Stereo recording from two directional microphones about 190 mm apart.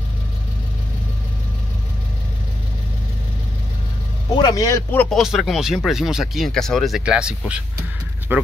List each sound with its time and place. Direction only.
4.4 s speech: 20° left (ahead or behind)
5.1 s speech: centre (ahead or behind)